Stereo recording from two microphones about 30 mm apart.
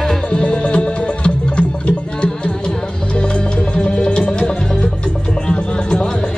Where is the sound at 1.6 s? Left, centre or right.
Left.